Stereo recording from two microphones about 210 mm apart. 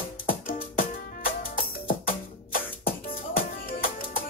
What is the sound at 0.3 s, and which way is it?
Music, 40° left (ahead or behind).